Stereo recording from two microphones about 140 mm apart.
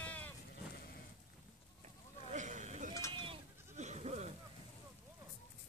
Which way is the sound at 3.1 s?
35° right (ahead or behind).